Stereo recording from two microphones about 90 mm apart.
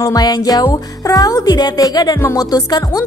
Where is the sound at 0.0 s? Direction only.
45° left (ahead or behind).